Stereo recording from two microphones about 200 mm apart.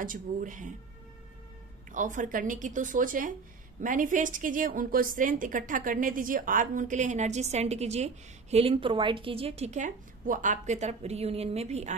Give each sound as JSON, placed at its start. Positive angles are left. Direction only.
{"t": 0.0, "sound": "a woman's voice", "side_deg": -40}
{"t": 1.9, "sound": "a woman's voice", "side_deg": -40}